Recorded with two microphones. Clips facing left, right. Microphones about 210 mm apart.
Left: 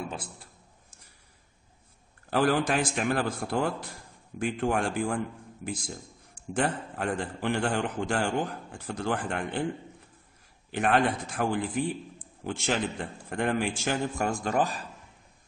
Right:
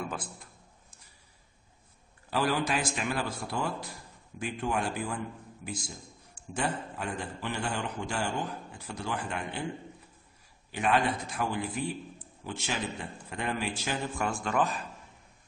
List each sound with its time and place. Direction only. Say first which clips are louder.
0.1 s a man's voice: even; 25° left (ahead or behind)
2.3 s a man's voice: left 4 dB; 50° left (ahead or behind)
10.7 s a man's voice: left 3 dB; 55° left (ahead or behind); by 14.9 s 35° left (ahead or behind)